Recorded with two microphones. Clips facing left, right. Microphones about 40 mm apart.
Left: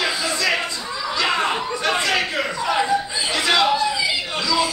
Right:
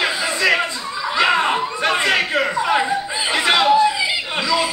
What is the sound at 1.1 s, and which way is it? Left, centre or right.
Chuckle, right.